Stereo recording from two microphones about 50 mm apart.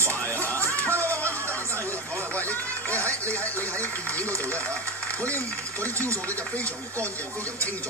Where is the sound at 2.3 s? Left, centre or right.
Left.